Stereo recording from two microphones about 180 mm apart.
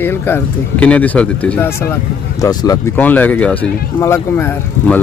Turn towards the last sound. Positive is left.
turn(degrees=10)  # may be behind; listen again after turning